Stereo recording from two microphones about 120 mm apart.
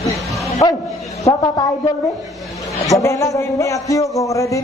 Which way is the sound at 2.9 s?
25° left (ahead or behind).